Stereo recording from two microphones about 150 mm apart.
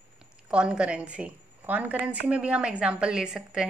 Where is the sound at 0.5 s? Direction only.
5° right (ahead or behind).